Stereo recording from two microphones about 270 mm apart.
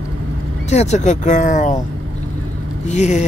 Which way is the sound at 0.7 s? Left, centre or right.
Left.